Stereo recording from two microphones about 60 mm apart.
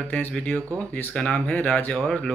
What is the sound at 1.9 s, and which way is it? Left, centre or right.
Speech, centre.